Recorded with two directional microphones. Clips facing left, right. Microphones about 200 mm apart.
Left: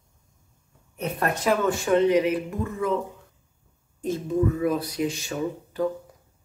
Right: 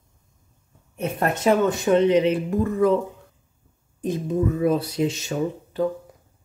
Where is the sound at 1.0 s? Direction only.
25° right (ahead or behind).